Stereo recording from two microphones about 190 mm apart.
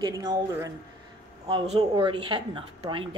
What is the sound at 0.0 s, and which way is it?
Speech, 20° right (ahead or behind).